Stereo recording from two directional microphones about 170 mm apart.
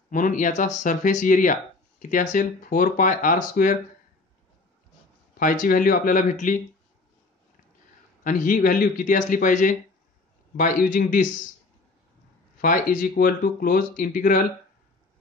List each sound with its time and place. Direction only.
0.1 s speech: 50° left (ahead or behind)
5.4 s speech: 55° left (ahead or behind)
8.2 s speech: 50° left (ahead or behind)
12.5 s speech: 55° left (ahead or behind)